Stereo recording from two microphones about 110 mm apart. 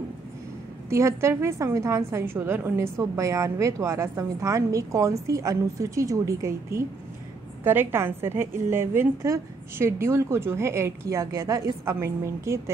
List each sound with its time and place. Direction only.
0.8 s a woman's voice: 25° right (ahead or behind)